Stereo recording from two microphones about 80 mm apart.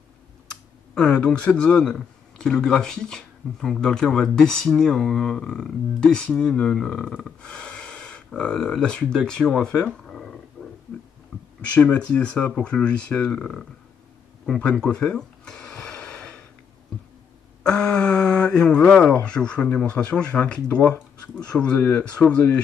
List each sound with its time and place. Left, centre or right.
0.5 s speech: centre
11.7 s speech: centre
14.4 s a sound: centre
17.6 s speech: centre